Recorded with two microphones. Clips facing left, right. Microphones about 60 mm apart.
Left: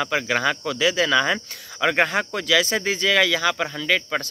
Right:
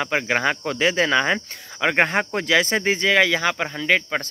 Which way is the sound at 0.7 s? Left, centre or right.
Right.